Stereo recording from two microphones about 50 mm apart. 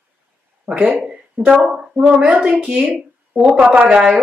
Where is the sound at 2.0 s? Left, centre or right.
Right.